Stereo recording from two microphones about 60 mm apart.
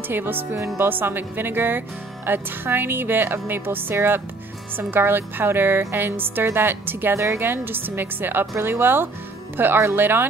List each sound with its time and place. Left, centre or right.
0.1 s speech: right